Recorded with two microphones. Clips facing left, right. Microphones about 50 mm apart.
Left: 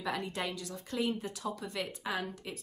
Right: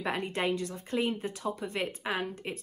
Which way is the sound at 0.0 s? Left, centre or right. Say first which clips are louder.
Right 4 dB; right.